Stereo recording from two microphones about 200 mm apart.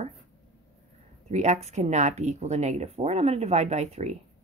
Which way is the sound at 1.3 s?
35° right (ahead or behind).